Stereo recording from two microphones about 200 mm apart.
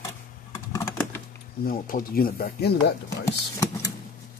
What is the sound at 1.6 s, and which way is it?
Speech, 45° left (ahead or behind).